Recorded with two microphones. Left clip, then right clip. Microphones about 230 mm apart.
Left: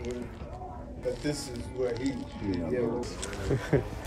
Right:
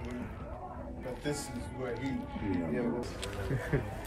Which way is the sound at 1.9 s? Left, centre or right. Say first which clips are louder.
Left 3 dB; left.